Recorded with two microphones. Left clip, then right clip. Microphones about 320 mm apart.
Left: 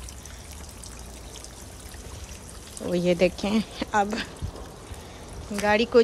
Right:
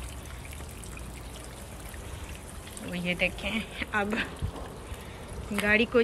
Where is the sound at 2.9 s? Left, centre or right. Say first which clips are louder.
Left 7 dB; centre.